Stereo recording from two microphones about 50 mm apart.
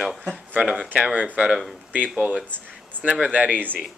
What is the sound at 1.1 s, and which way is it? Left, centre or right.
Speech, right.